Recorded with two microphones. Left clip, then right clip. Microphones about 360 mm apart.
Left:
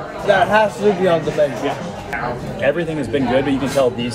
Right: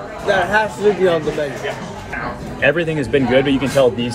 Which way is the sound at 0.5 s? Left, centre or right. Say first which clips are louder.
Left 1 dB; centre.